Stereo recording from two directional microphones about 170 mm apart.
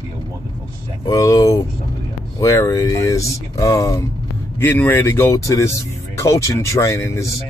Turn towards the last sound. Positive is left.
turn(degrees=15)  # may be behind; listen again after turning